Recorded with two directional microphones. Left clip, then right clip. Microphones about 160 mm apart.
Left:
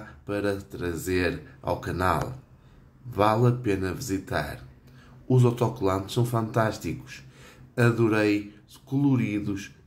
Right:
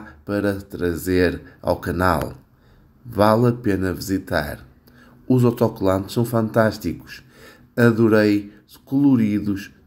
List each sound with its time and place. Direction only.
0.3 s speech: 35° right (ahead or behind)